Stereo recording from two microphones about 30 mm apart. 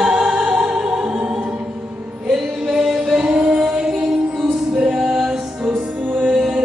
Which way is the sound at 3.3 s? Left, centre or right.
Right.